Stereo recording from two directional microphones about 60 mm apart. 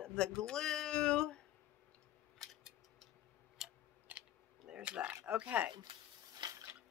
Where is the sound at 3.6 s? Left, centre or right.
Centre.